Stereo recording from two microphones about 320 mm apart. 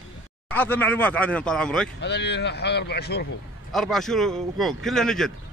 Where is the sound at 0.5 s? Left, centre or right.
Centre.